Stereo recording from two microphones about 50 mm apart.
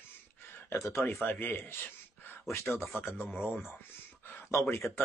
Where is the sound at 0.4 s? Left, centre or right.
Left.